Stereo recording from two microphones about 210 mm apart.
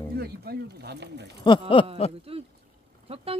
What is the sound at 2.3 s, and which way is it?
Speech, 25° right (ahead or behind).